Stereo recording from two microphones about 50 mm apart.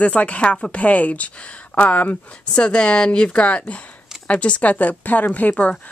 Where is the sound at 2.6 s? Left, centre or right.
Centre; by 5.5 s left.